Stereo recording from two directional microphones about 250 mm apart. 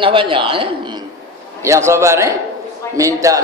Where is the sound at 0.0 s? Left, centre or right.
Centre.